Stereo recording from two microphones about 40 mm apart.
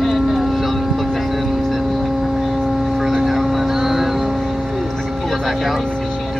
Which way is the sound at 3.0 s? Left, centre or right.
Centre.